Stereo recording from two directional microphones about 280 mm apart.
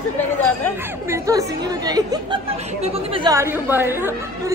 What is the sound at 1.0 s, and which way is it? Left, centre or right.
A woman's voice, centre.